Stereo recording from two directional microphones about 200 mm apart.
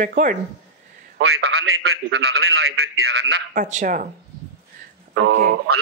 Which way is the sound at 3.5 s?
40° right (ahead or behind).